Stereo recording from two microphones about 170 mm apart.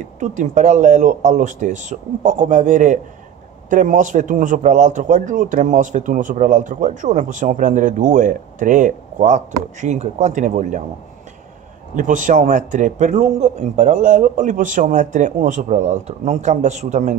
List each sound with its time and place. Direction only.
0.0 s a man's voice: 45° right (ahead or behind)
11.9 s a man's voice: 50° right (ahead or behind)